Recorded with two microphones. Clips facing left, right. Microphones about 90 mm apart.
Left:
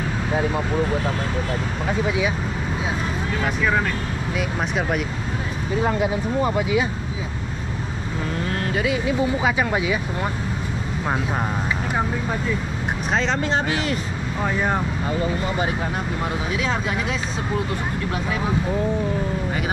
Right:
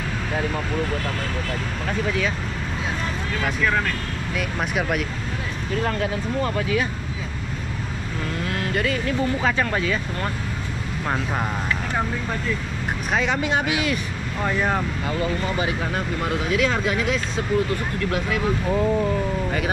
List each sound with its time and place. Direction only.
0.3 s speech: 15° left (ahead or behind)
3.3 s speech: 10° left (ahead or behind)
5.7 s speech: 15° left (ahead or behind)
8.4 s speech: centre (ahead or behind)
13.4 s speech: 15° right (ahead or behind)
14.4 s speech: 5° left (ahead or behind)
16.4 s speech: 25° left (ahead or behind)